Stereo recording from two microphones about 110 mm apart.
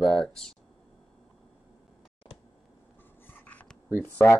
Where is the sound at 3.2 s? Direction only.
15° left (ahead or behind).